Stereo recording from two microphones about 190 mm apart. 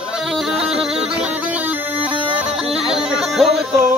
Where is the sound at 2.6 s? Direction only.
5° right (ahead or behind).